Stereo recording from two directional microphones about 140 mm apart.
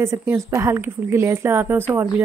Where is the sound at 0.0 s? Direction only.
20° right (ahead or behind).